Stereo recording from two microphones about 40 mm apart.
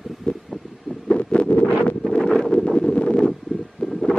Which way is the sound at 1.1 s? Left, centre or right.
Left.